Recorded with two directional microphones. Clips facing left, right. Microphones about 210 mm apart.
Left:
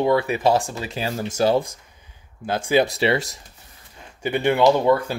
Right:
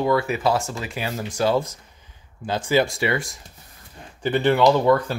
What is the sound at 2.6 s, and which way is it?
Speech, 15° left (ahead or behind).